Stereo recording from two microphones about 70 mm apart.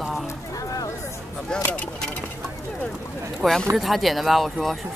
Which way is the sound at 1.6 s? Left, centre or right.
Left.